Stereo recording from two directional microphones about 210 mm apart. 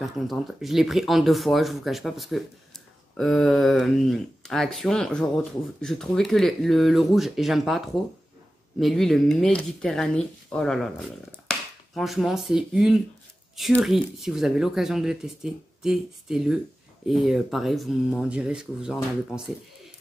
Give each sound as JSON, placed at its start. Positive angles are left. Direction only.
{"t": 0.0, "sound": "speech", "side_deg": 0}